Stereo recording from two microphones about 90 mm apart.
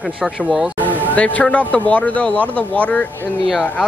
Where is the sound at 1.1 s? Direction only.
15° left (ahead or behind).